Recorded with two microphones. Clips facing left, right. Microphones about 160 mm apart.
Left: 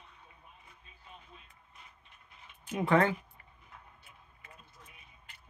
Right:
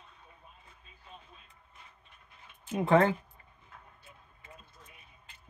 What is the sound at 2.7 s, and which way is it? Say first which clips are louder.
Speech: right 2 dB; 25° right (ahead or behind).